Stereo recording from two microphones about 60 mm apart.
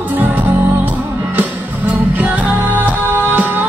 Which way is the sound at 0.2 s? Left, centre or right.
Right.